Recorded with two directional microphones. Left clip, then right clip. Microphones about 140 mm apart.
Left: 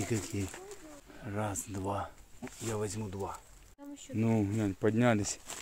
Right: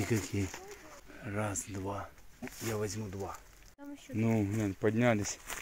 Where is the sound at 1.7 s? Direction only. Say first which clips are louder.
Left 3 dB; 25° left (ahead or behind).